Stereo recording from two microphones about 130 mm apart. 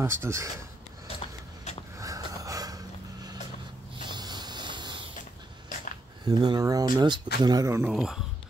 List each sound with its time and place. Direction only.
0.0 s speech: 20° right (ahead or behind)
2.0 s snort: 25° right (ahead or behind)
4.0 s a sound: 35° right (ahead or behind)
6.2 s speech: 30° right (ahead or behind)
7.9 s speech: centre (ahead or behind)